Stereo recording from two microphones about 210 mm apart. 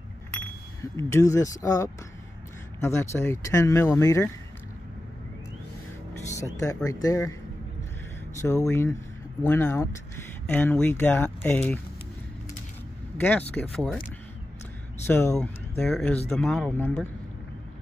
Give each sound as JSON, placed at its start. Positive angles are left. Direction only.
{"t": 0.9, "sound": "speech", "side_deg": 15}
{"t": 6.3, "sound": "speech", "side_deg": 15}
{"t": 8.4, "sound": "speech", "side_deg": 15}
{"t": 13.2, "sound": "speech", "side_deg": 10}
{"t": 15.0, "sound": "speech", "side_deg": 10}